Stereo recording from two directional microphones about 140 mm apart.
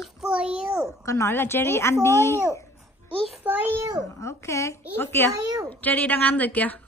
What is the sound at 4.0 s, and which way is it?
Speech, 25° left (ahead or behind).